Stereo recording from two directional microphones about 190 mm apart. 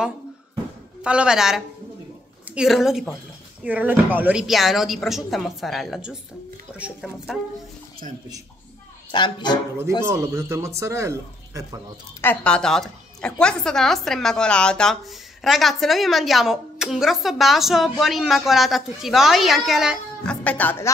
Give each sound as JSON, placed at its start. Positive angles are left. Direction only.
{"t": 1.0, "sound": "a woman's voice", "side_deg": -5}
{"t": 9.1, "sound": "speech", "side_deg": 25}
{"t": 10.0, "sound": "a man's voice", "side_deg": -15}
{"t": 12.2, "sound": "a woman's voice", "side_deg": 5}
{"t": 20.4, "sound": "speech", "side_deg": 10}